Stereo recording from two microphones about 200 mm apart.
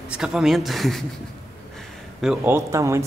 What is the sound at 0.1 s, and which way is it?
Speech, centre (ahead or behind).